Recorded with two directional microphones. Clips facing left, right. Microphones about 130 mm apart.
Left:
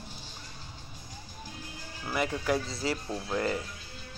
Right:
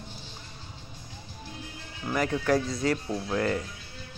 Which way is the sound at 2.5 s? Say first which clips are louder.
Right 6 dB; 30° left (ahead or behind).